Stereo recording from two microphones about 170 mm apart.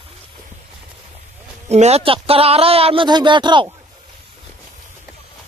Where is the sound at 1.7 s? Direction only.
40° right (ahead or behind).